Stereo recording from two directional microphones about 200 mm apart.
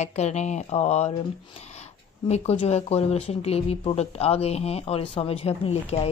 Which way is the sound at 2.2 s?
30° left (ahead or behind).